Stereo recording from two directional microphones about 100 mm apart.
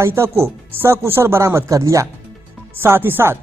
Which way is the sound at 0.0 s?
25° right (ahead or behind).